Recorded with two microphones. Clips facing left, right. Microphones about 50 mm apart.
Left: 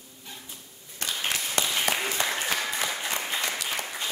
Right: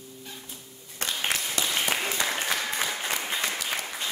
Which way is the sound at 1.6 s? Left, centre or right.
Left.